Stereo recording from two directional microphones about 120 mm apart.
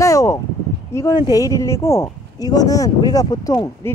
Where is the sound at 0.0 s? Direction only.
25° left (ahead or behind).